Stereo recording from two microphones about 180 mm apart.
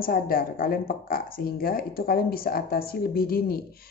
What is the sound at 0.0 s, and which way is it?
Speech, 55° left (ahead or behind).